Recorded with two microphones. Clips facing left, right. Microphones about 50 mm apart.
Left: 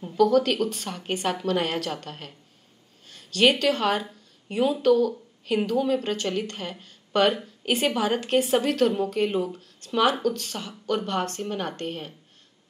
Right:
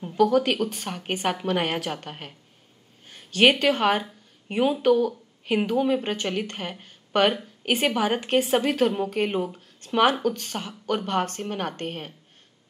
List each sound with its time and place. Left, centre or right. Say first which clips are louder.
0.0 s a woman's voice: even; centre
10.7 s a woman's voice: right 1 dB; centre